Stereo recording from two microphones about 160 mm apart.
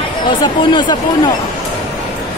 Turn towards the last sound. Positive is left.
turn(degrees=30)  # may be behind; listen again after turning